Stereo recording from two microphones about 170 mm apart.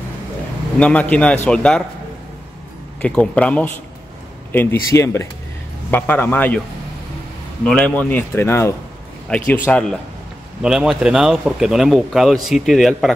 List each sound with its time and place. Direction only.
0.7 s a man's voice: 5° left (ahead or behind)
3.0 s a man's voice: 5° left (ahead or behind)
7.6 s a man's voice: 5° left (ahead or behind)
10.6 s speech: 5° right (ahead or behind)